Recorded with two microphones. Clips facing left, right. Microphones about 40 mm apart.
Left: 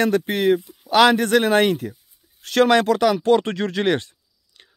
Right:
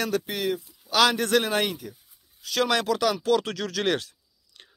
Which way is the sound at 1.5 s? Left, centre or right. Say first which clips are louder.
Left 9 dB; left.